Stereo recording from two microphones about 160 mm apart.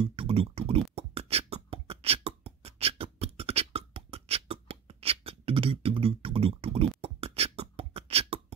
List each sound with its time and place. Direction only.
0.0 s beatboxing: 35° right (ahead or behind)